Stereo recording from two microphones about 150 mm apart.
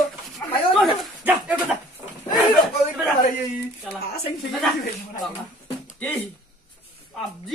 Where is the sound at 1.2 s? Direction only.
10° right (ahead or behind).